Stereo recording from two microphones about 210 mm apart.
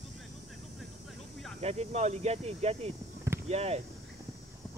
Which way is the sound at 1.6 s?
30° right (ahead or behind).